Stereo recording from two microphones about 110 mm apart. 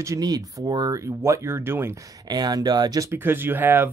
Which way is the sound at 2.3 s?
40° right (ahead or behind).